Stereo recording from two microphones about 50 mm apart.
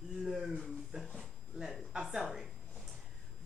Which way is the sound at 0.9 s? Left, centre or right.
Right.